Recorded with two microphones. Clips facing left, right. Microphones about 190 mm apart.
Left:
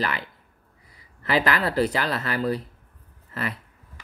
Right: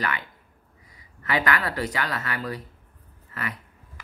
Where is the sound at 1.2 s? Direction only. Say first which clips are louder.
Left 3 dB; 30° left (ahead or behind).